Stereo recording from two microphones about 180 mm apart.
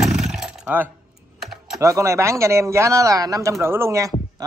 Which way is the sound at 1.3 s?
Centre (ahead or behind).